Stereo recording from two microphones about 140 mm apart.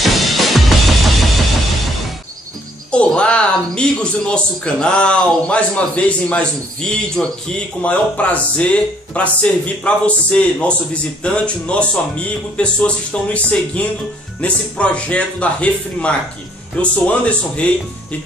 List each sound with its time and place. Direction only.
0.0 s music: centre (ahead or behind)
2.9 s speech: 10° left (ahead or behind)